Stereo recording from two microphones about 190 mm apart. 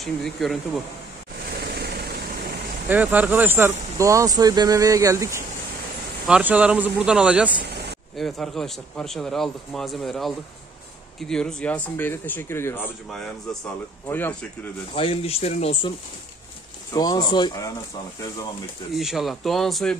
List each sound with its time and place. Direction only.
0.0 s a man's voice: centre (ahead or behind)
1.6 s vehicle: 55° right (ahead or behind)
2.9 s a man's voice: 10° right (ahead or behind); by 14.3 s 10° left (ahead or behind)
15.0 s speech: 30° left (ahead or behind)
16.9 s speech: 20° left (ahead or behind)
18.9 s a man's voice: centre (ahead or behind)